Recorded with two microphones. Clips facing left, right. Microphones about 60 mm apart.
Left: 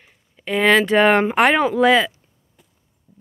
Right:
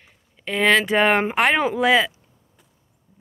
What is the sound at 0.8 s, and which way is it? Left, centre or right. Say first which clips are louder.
Speech: left 3 dB; centre.